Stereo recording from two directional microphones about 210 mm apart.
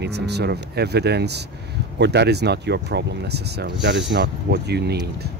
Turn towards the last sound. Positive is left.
turn(degrees=-50)  # may be behind; listen again after turning